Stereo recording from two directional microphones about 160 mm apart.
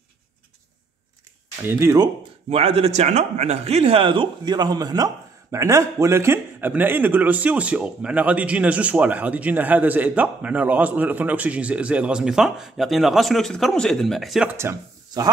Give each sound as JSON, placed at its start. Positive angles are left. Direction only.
{"t": 1.7, "sound": "a man's voice", "side_deg": -15}
{"t": 2.5, "sound": "a man's voice", "side_deg": -40}
{"t": 14.5, "sound": "speech", "side_deg": -15}